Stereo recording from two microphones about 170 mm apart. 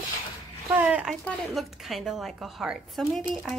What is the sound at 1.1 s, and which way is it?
A woman's voice, centre (ahead or behind).